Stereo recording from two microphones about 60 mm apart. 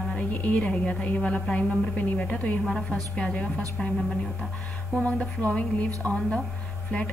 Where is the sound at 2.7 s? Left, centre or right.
Centre.